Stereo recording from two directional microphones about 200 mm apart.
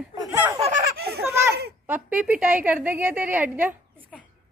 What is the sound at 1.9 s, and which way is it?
A woman's voice, 5° right (ahead or behind).